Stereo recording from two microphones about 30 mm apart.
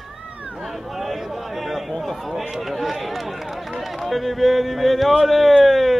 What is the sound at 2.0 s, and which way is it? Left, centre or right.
Run, centre.